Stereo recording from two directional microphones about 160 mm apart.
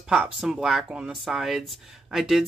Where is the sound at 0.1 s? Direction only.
5° right (ahead or behind).